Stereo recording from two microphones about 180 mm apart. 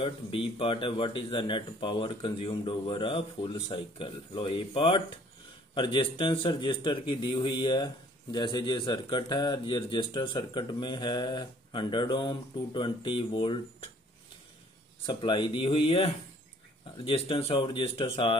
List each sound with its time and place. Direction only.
0.0 s a man's voice: 30° left (ahead or behind)
15.0 s a man's voice: 25° left (ahead or behind)